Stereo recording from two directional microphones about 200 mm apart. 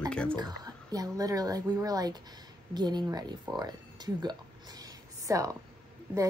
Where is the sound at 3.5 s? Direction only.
20° right (ahead or behind).